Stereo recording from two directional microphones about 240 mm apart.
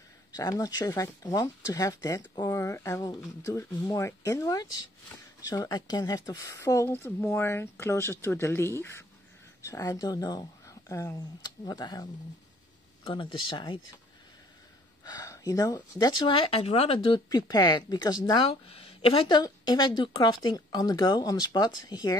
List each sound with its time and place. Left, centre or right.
0.3 s speech: centre
15.0 s speech: centre